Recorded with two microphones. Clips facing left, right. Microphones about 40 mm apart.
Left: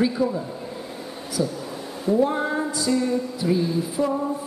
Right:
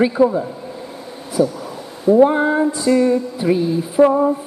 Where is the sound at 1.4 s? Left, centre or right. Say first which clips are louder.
Right 8 dB; right.